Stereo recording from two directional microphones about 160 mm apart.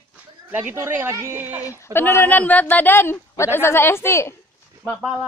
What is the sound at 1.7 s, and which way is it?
Speech, 15° left (ahead or behind).